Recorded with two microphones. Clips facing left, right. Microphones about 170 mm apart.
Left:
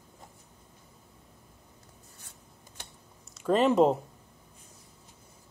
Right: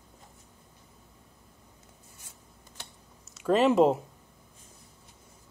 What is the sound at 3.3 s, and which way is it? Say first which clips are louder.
Speech: right 1 dB; 5° right (ahead or behind).